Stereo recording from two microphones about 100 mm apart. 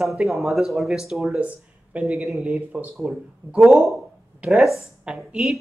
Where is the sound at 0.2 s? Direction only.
Centre (ahead or behind).